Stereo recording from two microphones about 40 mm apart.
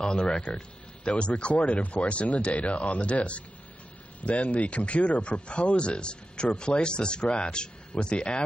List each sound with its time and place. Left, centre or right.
0.0 s speech: left